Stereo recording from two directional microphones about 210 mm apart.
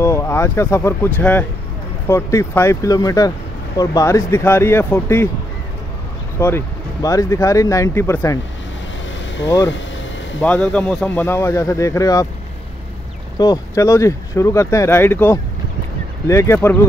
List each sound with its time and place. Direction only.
0.0 s speech: 15° left (ahead or behind)
6.4 s speech: 15° left (ahead or behind)
10.4 s speech: 5° left (ahead or behind)
13.4 s speech: 15° left (ahead or behind)